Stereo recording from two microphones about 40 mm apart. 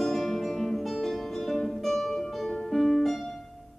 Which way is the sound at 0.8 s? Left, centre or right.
Centre.